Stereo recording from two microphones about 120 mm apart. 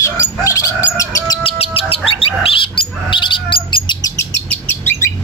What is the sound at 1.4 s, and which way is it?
Bird, 50° left (ahead or behind).